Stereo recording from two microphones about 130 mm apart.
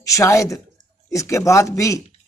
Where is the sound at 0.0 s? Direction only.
25° left (ahead or behind).